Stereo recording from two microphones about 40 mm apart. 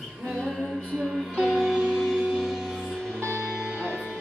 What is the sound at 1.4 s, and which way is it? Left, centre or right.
Music, centre.